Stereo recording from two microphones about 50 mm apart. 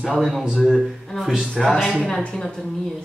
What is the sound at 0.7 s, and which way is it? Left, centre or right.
Speech, centre.